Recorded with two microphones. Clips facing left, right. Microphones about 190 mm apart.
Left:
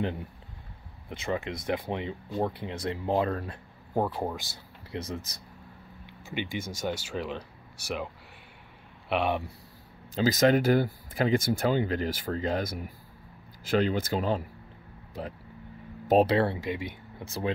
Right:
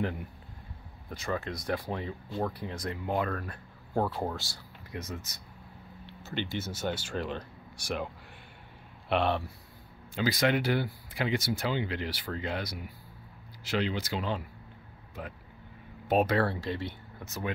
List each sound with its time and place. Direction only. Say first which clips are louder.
0.0 s speech: left 1 dB; 25° left (ahead or behind)
3.9 s speech: left 1 dB; 15° left (ahead or behind)
4.9 s speech: left 4 dB; 30° left (ahead or behind)
6.0 s speech: left 1 dB; 10° left (ahead or behind)
9.1 s speech: even; 10° left (ahead or behind)
10.1 s speech: left 5 dB; 40° left (ahead or behind)
16.1 s speech: left 4 dB; 30° left (ahead or behind)
17.2 s speech: left 4 dB; 30° left (ahead or behind)